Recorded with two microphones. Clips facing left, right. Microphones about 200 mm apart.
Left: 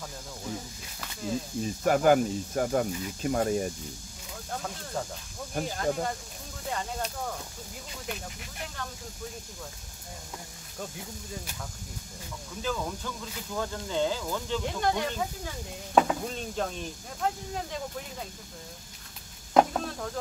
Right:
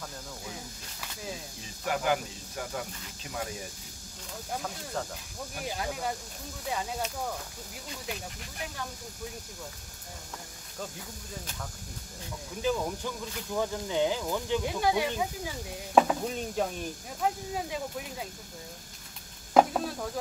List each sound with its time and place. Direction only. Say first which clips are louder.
1.6 s speech: left 8 dB; 45° left (ahead or behind)
4.5 s speech: even; centre (ahead or behind)
8.1 s speech: left 2 dB; 5° right (ahead or behind)
12.6 s speech: right 3 dB; 15° right (ahead or behind)
19.5 s chopping: even; 5° right (ahead or behind)